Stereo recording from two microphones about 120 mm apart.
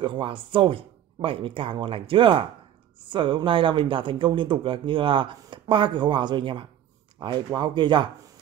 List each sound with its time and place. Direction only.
0.0 s speech: 45° right (ahead or behind)